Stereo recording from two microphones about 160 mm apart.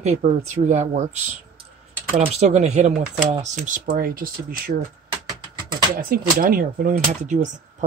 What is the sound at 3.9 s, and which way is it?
Speech, 65° right (ahead or behind).